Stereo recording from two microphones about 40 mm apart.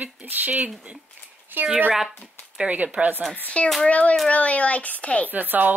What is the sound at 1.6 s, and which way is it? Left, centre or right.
Speech, right.